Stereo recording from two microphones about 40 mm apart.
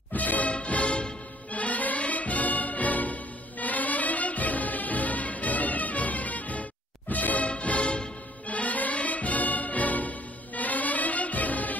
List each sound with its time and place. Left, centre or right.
0.1 s music: left
7.4 s music: left